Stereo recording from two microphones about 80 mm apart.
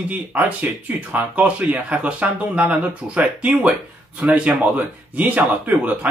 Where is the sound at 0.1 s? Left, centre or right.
Right.